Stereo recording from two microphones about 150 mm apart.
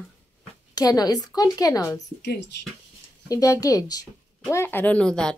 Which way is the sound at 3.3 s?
25° left (ahead or behind).